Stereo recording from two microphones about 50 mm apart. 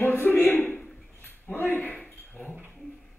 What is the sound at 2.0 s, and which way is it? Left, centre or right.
Dog, left.